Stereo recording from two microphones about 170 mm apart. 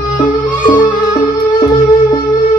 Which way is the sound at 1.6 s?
25° left (ahead or behind).